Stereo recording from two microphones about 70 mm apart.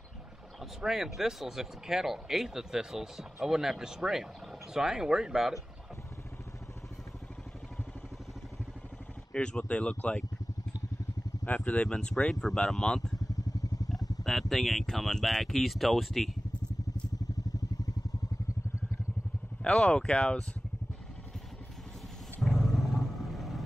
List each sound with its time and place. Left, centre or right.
0.6 s speech: centre
9.3 s speech: centre
11.4 s speech: centre
13.3 s vehicle: left
14.5 s speech: centre
19.6 s speech: centre
22.4 s wild animals: centre